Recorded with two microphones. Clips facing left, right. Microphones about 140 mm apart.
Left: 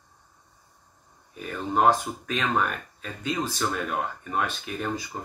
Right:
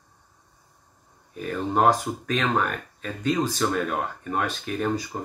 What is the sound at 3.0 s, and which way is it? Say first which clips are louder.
Speech: right 6 dB; 40° right (ahead or behind).